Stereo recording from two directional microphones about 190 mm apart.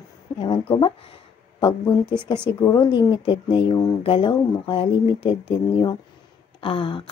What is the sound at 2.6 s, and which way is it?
Speech, 25° left (ahead or behind).